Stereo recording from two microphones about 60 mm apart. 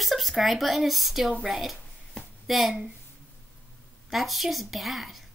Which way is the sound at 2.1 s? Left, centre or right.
Centre.